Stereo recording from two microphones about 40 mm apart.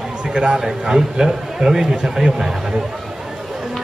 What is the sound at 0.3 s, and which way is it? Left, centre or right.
Speech, right.